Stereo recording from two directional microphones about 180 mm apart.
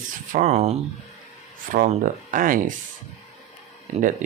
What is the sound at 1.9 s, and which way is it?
Speech, 45° right (ahead or behind).